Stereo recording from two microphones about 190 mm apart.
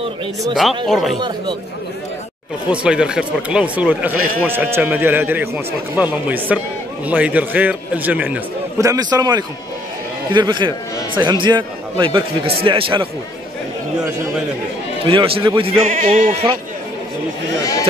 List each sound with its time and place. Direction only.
0.8 s speech: centre (ahead or behind)
2.7 s a man's voice: 5° right (ahead or behind); by 13.1 s 25° right (ahead or behind)
15.0 s speech: 30° right (ahead or behind)
15.9 s speech: 40° right (ahead or behind)